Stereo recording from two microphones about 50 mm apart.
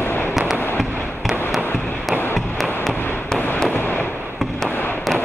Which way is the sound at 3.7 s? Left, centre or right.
Left.